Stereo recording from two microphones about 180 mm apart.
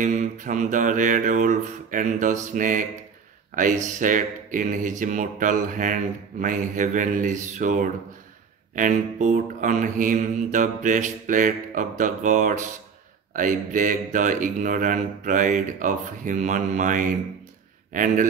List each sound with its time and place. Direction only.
0.0 s mantra: 45° right (ahead or behind)